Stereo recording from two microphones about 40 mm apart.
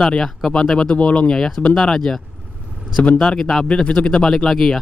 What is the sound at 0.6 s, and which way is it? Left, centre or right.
Speech, centre.